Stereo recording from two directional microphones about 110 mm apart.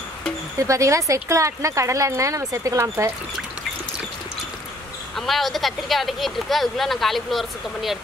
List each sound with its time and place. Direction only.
0.6 s speech: 30° right (ahead or behind)
5.1 s speech: centre (ahead or behind)